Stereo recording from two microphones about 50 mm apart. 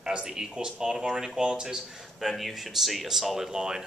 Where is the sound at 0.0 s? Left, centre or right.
Centre.